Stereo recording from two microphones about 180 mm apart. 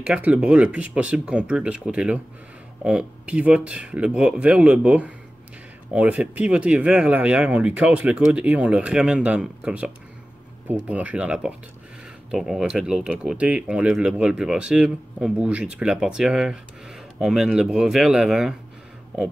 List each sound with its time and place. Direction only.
0.0 s speech: 5° right (ahead or behind)